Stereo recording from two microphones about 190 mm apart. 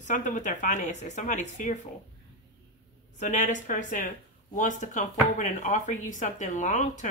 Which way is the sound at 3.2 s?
40° left (ahead or behind).